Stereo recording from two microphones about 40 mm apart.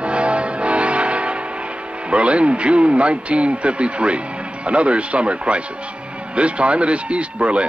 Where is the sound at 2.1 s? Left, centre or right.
Right.